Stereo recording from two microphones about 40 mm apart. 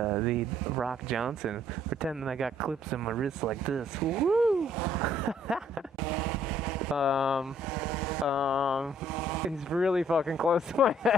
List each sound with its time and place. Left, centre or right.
0.0 s speech: centre